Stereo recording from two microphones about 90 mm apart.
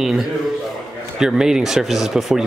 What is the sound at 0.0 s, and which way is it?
Speech, 5° right (ahead or behind).